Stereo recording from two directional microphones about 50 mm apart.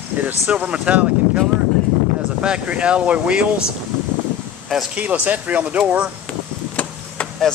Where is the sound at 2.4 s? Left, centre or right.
Centre.